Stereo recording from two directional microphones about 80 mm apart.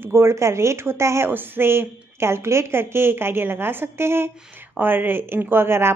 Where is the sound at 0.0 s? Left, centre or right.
Right.